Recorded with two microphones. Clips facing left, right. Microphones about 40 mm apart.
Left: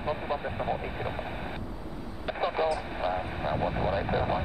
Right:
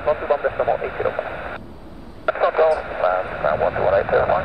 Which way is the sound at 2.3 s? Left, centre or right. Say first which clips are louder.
Right 12 dB; right.